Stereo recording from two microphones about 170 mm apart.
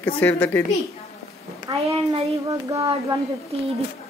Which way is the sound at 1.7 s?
25° right (ahead or behind).